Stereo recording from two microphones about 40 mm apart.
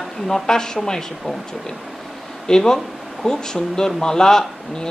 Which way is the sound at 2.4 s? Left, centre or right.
Centre.